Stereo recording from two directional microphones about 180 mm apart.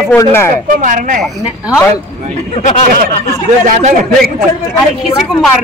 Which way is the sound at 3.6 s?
45° right (ahead or behind).